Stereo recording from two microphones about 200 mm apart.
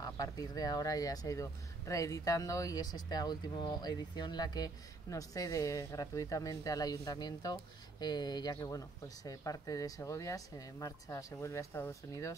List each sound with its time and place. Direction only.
0.0 s speech: 20° left (ahead or behind)